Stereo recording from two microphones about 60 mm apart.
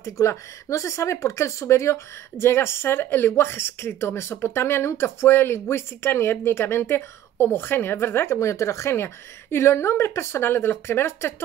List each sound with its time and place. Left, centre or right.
0.0 s speech: left